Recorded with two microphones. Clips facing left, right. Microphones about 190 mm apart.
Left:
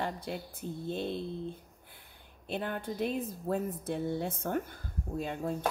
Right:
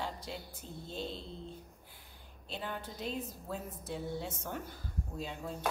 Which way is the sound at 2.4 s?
55° left (ahead or behind).